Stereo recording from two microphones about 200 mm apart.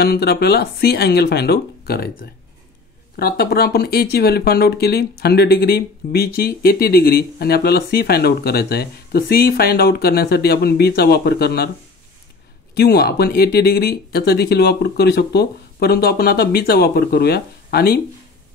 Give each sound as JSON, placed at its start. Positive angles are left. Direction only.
{"t": 0.0, "sound": "speech", "side_deg": 50}
{"t": 12.7, "sound": "speech", "side_deg": 55}